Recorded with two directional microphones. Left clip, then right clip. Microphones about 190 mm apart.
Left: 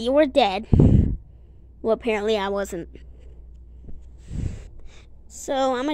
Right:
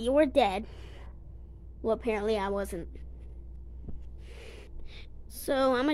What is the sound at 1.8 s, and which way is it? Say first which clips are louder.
Speech: left 7 dB; 20° left (ahead or behind).